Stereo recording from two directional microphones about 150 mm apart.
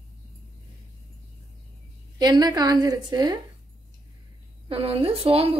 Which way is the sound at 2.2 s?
25° right (ahead or behind).